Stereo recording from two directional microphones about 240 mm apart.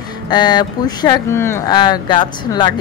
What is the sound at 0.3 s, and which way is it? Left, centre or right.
Speech, centre.